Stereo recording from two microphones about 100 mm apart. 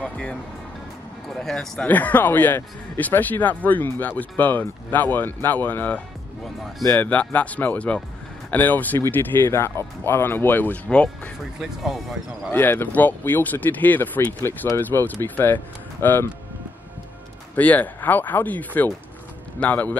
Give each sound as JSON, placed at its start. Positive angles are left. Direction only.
{"t": 0.0, "sound": "speech", "side_deg": 10}
{"t": 1.4, "sound": "speech", "side_deg": 5}
{"t": 1.9, "sound": "speech", "side_deg": 15}
{"t": 11.6, "sound": "speech", "side_deg": 0}
{"t": 12.4, "sound": "speech", "side_deg": 20}
{"t": 17.6, "sound": "speech", "side_deg": 15}